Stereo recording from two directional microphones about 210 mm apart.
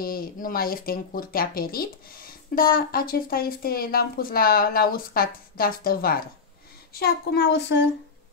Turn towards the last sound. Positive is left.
turn(degrees=55)  # may be behind; listen again after turning